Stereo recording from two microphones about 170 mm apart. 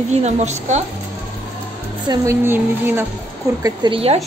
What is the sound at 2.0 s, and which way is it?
A woman's voice, 15° right (ahead or behind).